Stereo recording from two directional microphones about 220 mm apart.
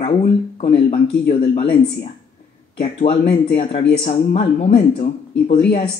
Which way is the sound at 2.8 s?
30° left (ahead or behind).